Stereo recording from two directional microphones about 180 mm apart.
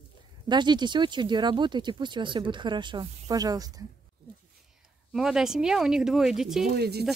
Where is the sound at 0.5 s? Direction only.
25° right (ahead or behind).